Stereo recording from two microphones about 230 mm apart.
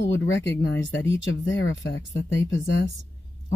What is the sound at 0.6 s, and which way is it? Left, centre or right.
Speech, left.